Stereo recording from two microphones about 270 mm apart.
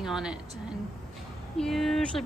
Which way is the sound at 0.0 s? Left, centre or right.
Centre.